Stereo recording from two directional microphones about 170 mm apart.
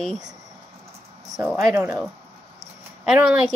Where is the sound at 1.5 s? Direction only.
15° right (ahead or behind).